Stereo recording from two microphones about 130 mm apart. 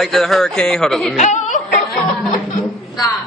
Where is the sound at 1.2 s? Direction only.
70° left (ahead or behind).